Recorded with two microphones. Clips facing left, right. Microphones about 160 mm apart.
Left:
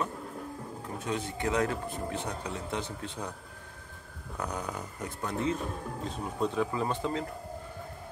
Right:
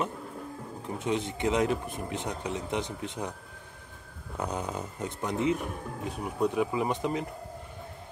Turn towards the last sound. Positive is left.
turn(degrees=-15)  # may be behind; listen again after turning